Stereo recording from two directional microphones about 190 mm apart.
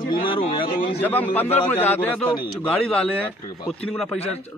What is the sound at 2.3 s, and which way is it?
Speech, 25° left (ahead or behind).